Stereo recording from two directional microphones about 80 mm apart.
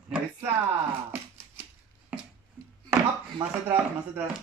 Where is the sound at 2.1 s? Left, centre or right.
Centre.